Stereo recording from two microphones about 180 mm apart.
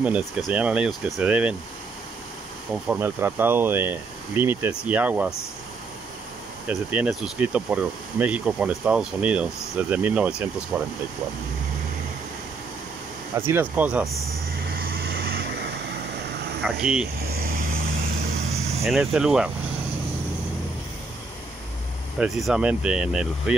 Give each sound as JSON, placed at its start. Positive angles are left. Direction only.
{"t": 0.0, "sound": "speech", "side_deg": -5}
{"t": 2.7, "sound": "speech", "side_deg": -10}
{"t": 6.7, "sound": "speech", "side_deg": -5}
{"t": 13.4, "sound": "speech", "side_deg": -10}
{"t": 14.7, "sound": "vehicle", "side_deg": -60}
{"t": 16.6, "sound": "speech", "side_deg": -5}
{"t": 18.5, "sound": "vehicle", "side_deg": -35}
{"t": 18.9, "sound": "speech", "side_deg": -5}
{"t": 22.2, "sound": "speech", "side_deg": -5}